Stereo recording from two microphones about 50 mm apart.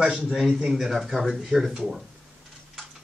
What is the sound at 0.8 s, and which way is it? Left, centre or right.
Speech, centre.